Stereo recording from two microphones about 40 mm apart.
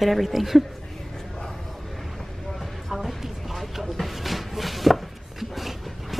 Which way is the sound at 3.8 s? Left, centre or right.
Centre.